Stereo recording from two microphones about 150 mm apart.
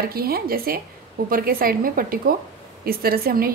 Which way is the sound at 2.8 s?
90° right.